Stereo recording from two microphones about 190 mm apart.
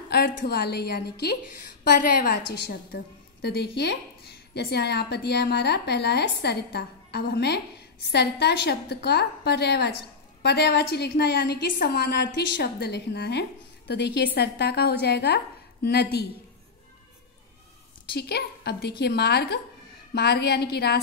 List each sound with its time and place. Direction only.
0.1 s a sound: 65° left (ahead or behind)
0.4 s a woman's voice: 60° left (ahead or behind)
18.1 s a woman's voice: 60° left (ahead or behind)